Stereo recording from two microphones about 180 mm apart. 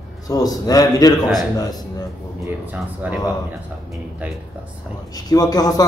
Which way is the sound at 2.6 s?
10° right (ahead or behind).